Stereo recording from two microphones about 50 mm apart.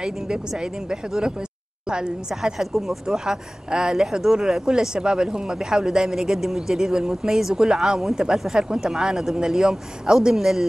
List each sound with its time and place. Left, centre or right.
0.0 s speech: centre
2.6 s speech: centre